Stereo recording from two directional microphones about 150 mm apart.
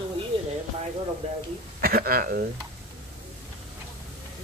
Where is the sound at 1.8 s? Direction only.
80° right.